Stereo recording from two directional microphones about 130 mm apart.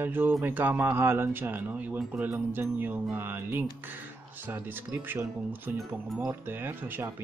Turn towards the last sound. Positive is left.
turn(degrees=-15)  # may be behind; listen again after turning